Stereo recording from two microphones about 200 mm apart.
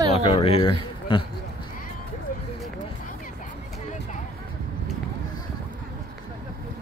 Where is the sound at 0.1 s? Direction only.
30° left (ahead or behind).